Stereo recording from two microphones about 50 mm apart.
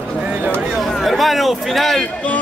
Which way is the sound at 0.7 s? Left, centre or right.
Centre.